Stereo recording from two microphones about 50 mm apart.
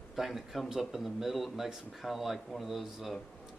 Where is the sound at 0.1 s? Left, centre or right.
Centre.